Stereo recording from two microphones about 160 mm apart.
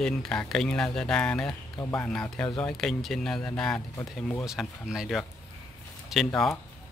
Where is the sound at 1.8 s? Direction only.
15° left (ahead or behind).